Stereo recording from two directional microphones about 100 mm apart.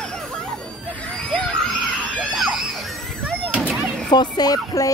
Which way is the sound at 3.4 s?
15° right (ahead or behind).